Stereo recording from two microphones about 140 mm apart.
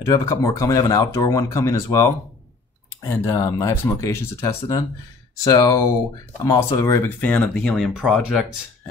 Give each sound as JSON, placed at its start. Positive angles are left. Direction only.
{"t": 0.0, "sound": "speech", "side_deg": 20}